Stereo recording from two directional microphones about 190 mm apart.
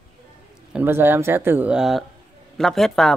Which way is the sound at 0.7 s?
10° right (ahead or behind).